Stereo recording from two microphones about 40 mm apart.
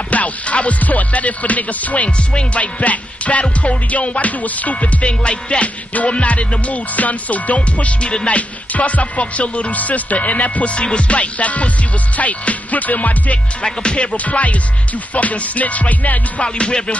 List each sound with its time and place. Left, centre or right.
0.1 s music: left
8.1 s music: left
8.4 s music: left
13.6 s music: left
16.5 s music: left